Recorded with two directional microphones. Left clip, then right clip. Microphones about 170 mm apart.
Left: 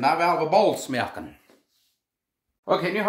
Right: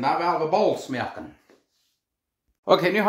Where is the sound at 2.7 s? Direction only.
60° right (ahead or behind).